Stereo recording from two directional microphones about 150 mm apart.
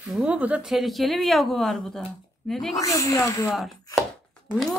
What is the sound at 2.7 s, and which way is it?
Speech, 20° left (ahead or behind).